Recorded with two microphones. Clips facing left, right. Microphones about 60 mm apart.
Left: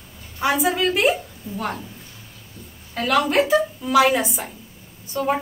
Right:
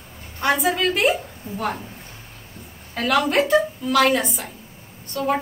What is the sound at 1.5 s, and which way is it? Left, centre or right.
Speech, right.